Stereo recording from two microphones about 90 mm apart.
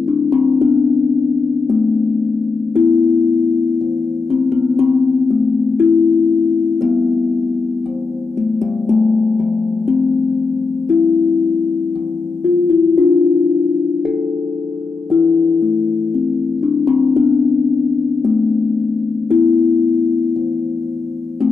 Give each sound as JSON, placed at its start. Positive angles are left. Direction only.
{"t": 0.1, "sound": "music", "side_deg": 0}
{"t": 2.7, "sound": "music", "side_deg": -5}
{"t": 4.3, "sound": "music", "side_deg": 0}
{"t": 8.8, "sound": "music", "side_deg": 0}
{"t": 12.4, "sound": "music", "side_deg": -5}
{"t": 15.0, "sound": "music", "side_deg": -5}
{"t": 19.3, "sound": "music", "side_deg": -5}